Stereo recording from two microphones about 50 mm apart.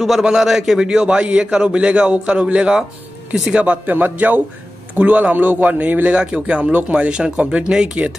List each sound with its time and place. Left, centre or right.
0.2 s a man's voice: centre
3.8 s speech: right
6.1 s a man's voice: right